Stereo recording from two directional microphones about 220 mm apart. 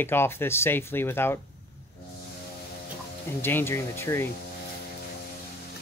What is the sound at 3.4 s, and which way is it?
Speech, 10° left (ahead or behind).